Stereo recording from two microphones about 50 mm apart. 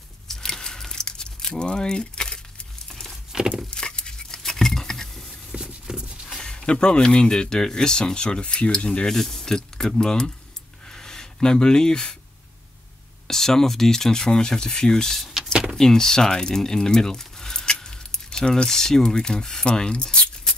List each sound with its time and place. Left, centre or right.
0.3 s crumpling: centre
2.9 s patter: centre
5.9 s a sound: centre
6.3 s speech: centre
10.9 s a sound: centre
13.3 s speech: centre